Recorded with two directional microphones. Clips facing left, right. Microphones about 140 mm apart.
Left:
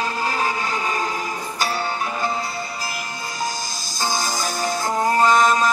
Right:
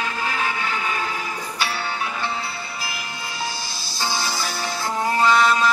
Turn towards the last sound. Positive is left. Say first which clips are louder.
# left 1 dB
turn(degrees=45)  # may be behind; listen again after turning